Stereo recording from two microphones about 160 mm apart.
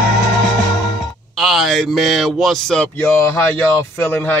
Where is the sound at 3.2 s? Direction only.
15° left (ahead or behind).